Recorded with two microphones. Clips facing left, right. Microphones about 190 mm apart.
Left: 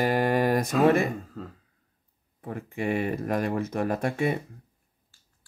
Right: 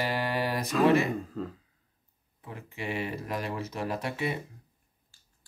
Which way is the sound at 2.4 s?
50° left (ahead or behind).